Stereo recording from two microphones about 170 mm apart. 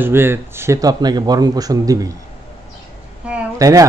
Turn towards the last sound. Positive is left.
turn(degrees=-20)  # may be behind; listen again after turning